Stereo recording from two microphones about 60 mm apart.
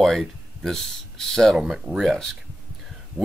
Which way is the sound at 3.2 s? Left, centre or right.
Right.